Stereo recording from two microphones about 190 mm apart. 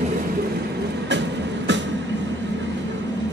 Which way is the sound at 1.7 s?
70° right (ahead or behind).